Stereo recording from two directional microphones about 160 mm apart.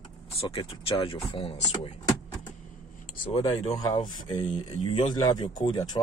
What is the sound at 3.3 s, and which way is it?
Speech, 35° left (ahead or behind).